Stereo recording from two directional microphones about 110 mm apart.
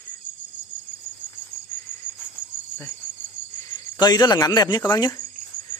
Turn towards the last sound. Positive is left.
turn(degrees=35)  # may be behind; listen again after turning